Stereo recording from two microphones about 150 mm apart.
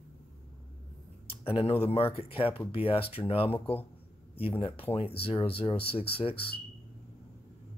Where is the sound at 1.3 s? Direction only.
40° left (ahead or behind).